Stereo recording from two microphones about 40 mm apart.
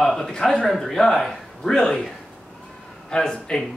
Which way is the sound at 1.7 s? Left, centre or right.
Centre.